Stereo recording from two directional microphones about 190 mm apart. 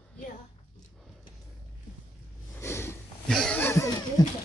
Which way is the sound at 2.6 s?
15° left (ahead or behind).